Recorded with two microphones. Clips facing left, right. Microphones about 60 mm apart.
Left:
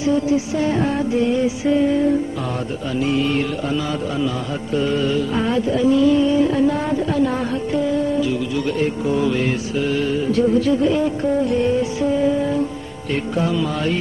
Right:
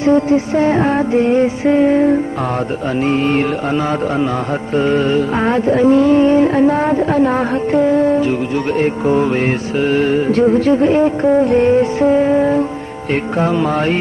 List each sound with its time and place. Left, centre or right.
0.0 s music: right
4.7 s music: right